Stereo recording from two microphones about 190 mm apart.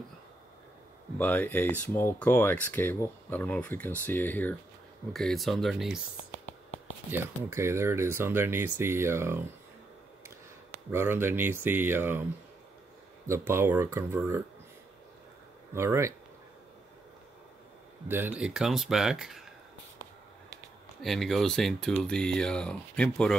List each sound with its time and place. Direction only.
1.1 s speech: 10° left (ahead or behind)
7.1 s speech: 15° right (ahead or behind)
10.9 s speech: 10° right (ahead or behind)
13.5 s speech: 10° right (ahead or behind)
15.7 s speech: 15° right (ahead or behind)
18.0 s speech: 10° right (ahead or behind)
21.0 s speech: centre (ahead or behind)